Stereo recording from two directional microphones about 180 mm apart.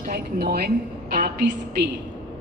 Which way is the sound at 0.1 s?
60° right (ahead or behind).